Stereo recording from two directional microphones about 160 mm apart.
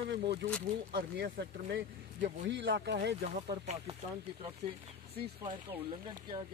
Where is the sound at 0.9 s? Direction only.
80° right.